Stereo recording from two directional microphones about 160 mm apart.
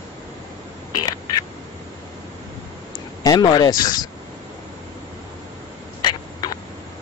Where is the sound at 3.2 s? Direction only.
25° left (ahead or behind).